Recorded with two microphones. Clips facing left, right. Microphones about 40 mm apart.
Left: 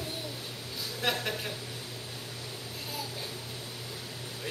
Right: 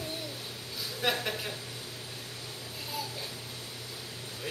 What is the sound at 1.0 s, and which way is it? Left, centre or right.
Speech, centre.